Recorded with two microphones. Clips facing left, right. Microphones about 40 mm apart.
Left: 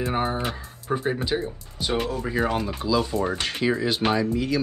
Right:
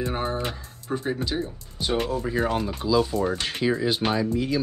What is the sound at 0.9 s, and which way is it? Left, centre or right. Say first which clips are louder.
Speech: left 2 dB; centre.